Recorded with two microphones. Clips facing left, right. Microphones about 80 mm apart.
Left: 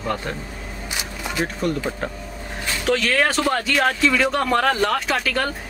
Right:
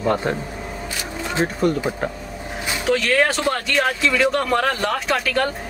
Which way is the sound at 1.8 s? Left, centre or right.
Centre.